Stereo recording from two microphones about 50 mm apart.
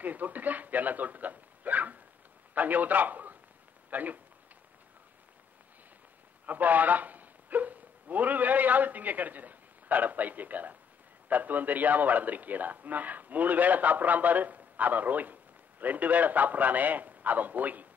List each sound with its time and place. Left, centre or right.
0.0 s a man's voice: right
6.4 s a man's voice: right